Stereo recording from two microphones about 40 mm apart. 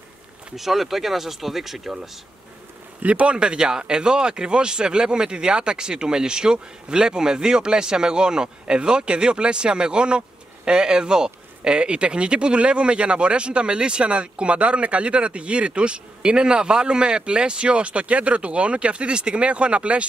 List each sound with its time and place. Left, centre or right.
0.6 s speech: centre
3.0 s speech: right